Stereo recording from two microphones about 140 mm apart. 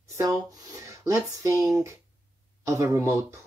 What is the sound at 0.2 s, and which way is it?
Speech, 25° right (ahead or behind).